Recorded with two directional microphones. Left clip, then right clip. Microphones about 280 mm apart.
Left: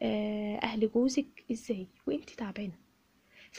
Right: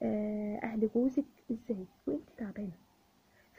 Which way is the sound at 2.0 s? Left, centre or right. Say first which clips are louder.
Left 3 dB; centre.